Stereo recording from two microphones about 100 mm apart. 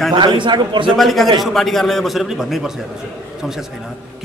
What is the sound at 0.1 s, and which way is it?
Speech, 55° right (ahead or behind).